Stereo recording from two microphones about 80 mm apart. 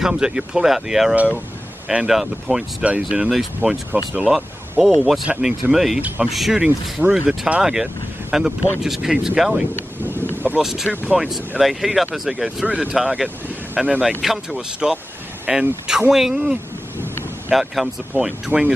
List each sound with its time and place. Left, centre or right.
0.0 s speech: centre
2.8 s speech: centre
3.3 s speech: centre
3.9 s speech: centre
4.3 s speech: centre
5.9 s speech: centre
6.3 s speech: centre
10.6 s speech: centre
12.6 s speech: centre
18.5 s speech: centre